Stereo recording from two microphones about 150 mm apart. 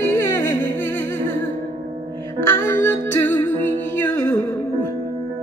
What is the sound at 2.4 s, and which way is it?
Music, 15° left (ahead or behind).